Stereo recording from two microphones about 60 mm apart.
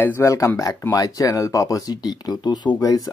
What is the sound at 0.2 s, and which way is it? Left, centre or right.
Speech, left.